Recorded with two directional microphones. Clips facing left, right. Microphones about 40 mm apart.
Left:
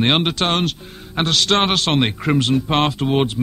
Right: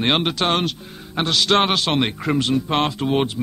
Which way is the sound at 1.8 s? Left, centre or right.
Centre.